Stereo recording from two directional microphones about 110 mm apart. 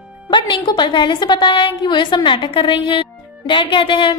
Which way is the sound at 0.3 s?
45° left (ahead or behind).